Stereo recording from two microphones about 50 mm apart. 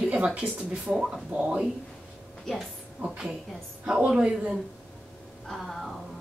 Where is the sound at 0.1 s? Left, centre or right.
Right.